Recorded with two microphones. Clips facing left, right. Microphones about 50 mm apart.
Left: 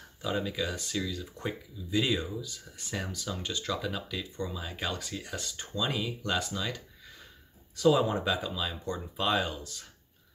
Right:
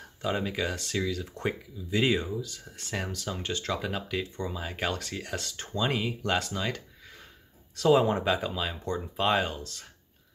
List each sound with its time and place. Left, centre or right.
0.0 s speech: right
2.4 s speech: right
5.8 s speech: right
8.0 s speech: right